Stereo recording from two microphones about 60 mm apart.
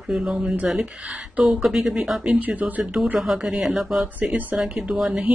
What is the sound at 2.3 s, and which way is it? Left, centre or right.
Speech, right.